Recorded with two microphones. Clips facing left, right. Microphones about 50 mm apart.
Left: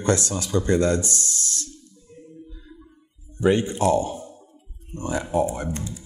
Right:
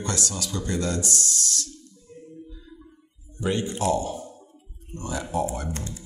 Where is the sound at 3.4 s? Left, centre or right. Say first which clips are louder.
Left 6 dB; left.